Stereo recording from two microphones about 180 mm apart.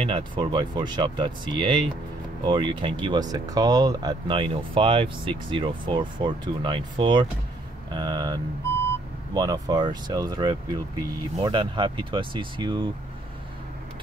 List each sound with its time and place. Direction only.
0.0 s speech: 25° right (ahead or behind)